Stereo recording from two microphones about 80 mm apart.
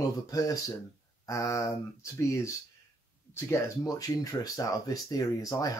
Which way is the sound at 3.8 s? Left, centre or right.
Left.